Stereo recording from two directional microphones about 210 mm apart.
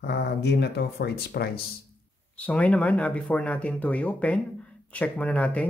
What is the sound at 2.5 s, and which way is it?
Speech, 5° left (ahead or behind).